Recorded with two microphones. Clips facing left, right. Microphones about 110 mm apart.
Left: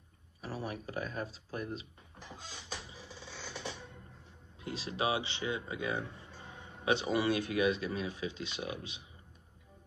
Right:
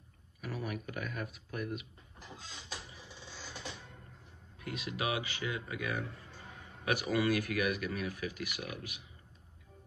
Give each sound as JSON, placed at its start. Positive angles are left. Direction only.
{"t": 0.4, "sound": "speech", "side_deg": 30}
{"t": 4.6, "sound": "speech", "side_deg": 30}